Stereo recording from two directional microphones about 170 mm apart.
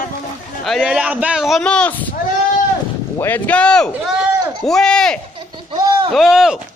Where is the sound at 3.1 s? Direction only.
10° left (ahead or behind).